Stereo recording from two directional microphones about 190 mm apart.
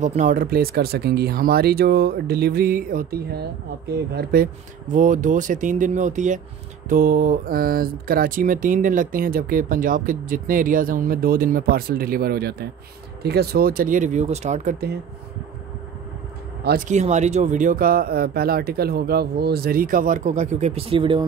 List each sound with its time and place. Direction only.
0.0 s speech: 40° right (ahead or behind)
16.6 s speech: 45° right (ahead or behind); by 21.3 s 25° right (ahead or behind)